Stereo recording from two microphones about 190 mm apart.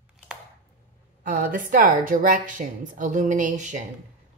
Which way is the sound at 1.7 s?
45° right (ahead or behind).